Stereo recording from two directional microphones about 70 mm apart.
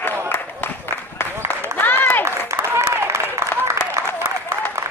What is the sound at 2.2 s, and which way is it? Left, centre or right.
Applause, right.